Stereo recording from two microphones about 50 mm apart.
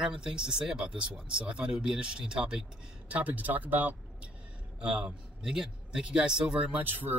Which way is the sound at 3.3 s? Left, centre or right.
Right.